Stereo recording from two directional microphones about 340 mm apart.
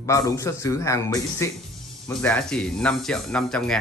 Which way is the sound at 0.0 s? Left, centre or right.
Centre.